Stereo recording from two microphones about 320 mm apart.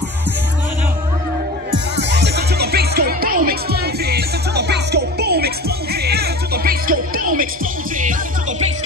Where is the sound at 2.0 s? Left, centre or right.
Right.